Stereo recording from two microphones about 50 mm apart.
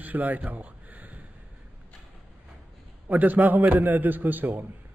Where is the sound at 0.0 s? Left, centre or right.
Right.